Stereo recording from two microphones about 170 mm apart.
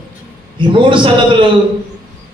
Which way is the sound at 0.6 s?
30° right (ahead or behind).